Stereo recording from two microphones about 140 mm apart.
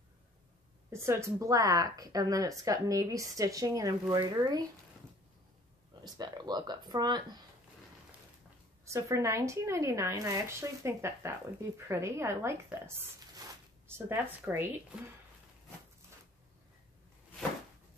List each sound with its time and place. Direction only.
0.8 s a woman's voice: 20° right (ahead or behind)
6.0 s a woman's voice: 30° right (ahead or behind)
8.9 s a woman's voice: 20° right (ahead or behind)